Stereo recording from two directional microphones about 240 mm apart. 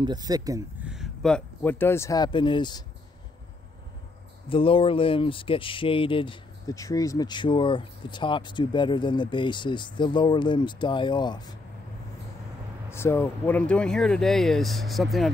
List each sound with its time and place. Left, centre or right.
0.0 s speech: centre
0.9 s speech: centre
4.5 s speech: left
12.9 s speech: centre